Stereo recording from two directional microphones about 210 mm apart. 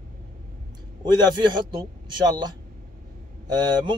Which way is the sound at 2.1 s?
20° right (ahead or behind).